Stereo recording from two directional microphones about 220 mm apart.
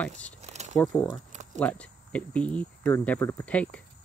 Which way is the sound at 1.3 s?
35° right (ahead or behind).